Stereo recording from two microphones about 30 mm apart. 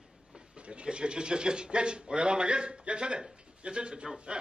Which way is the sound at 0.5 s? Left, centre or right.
Right.